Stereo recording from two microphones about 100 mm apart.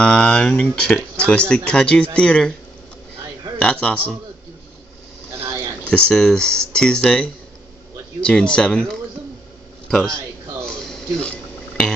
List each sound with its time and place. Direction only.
0.0 s speech: 10° left (ahead or behind)
1.1 s a sound: 10° left (ahead or behind)
1.5 s speech: 10° left (ahead or behind)
3.6 s speech: 10° left (ahead or behind)
5.9 s speech: 10° left (ahead or behind)
9.8 s a sound: 5° left (ahead or behind)